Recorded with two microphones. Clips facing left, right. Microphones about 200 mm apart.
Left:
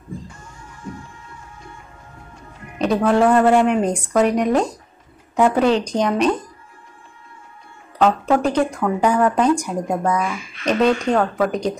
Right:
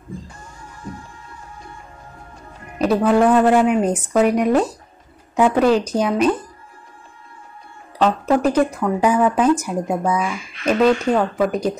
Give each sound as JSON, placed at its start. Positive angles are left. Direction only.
{"t": 0.3, "sound": "music", "side_deg": -35}
{"t": 2.8, "sound": "a woman's voice", "side_deg": -5}
{"t": 8.0, "sound": "a woman's voice", "side_deg": -5}